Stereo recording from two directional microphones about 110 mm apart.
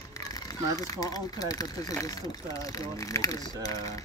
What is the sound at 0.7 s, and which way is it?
Speech, 30° left (ahead or behind).